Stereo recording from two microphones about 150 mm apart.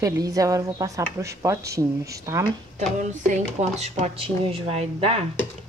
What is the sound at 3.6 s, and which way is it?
Speech, 45° right (ahead or behind).